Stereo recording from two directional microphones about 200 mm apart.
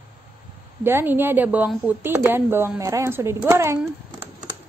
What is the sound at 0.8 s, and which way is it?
Female singing, 10° right (ahead or behind).